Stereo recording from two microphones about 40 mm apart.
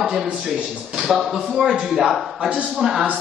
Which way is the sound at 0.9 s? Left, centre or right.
Centre.